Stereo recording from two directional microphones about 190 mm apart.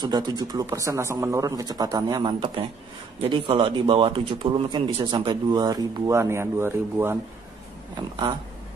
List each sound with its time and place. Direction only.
0.0 s a man's voice: 20° right (ahead or behind)
7.9 s a man's voice: 30° right (ahead or behind)